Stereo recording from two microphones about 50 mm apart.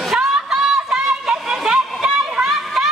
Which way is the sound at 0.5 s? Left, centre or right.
Centre.